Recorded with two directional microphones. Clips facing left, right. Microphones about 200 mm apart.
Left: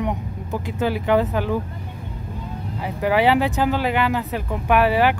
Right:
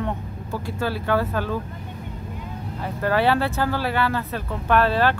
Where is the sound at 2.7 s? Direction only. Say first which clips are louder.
Left 2 dB; 15° left (ahead or behind).